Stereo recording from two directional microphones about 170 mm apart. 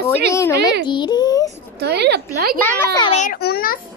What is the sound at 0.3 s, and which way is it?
Speech, 15° left (ahead or behind).